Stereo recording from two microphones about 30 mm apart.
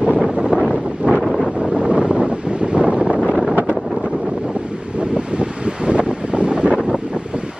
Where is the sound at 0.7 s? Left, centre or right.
Right.